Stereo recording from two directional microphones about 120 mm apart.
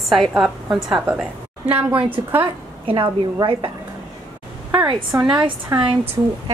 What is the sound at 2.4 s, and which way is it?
Speech, 45° right (ahead or behind).